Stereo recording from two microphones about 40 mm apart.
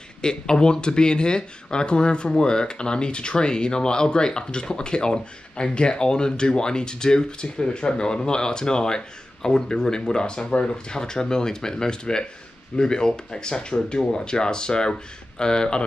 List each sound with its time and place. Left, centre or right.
0.2 s speech: centre